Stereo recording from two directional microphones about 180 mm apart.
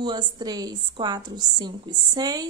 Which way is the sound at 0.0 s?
25° right (ahead or behind).